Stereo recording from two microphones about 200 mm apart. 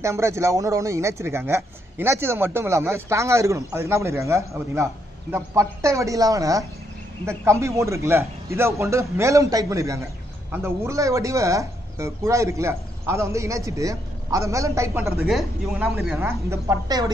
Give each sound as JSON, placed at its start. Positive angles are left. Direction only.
{"t": 0.0, "sound": "speech", "side_deg": -15}
{"t": 15.2, "sound": "speech", "side_deg": 0}
{"t": 16.2, "sound": "speech", "side_deg": -15}